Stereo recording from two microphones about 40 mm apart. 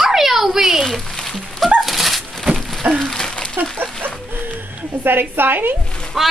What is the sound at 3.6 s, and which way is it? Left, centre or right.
Speech, right.